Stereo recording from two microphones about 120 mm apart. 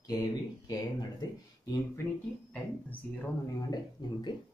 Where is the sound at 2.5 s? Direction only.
15° left (ahead or behind).